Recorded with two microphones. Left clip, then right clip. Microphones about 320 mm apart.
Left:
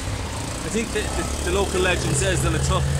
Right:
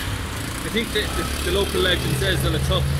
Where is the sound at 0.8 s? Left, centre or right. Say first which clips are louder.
Right 2 dB; centre.